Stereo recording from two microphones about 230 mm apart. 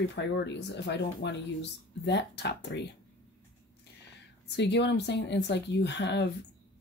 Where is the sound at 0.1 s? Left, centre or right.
Left.